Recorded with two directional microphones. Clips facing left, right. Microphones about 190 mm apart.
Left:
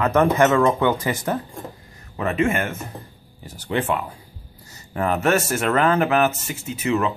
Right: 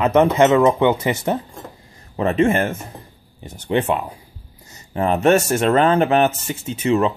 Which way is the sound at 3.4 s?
20° right (ahead or behind).